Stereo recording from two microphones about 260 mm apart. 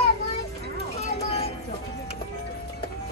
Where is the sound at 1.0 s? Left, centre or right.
Left.